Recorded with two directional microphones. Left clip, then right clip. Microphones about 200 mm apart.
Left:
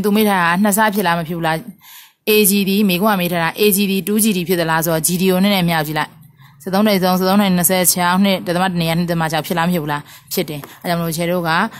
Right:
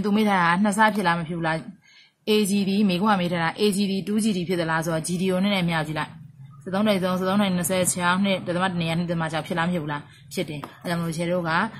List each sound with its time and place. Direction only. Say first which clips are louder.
0.0 s speech: left 6 dB; 50° left (ahead or behind)